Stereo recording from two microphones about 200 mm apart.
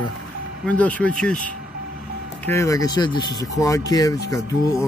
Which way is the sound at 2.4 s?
15° left (ahead or behind).